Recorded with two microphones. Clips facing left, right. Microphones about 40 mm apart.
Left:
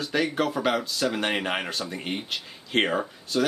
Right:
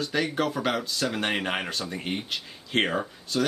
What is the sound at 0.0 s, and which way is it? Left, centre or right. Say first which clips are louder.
Speech: left 1 dB; centre.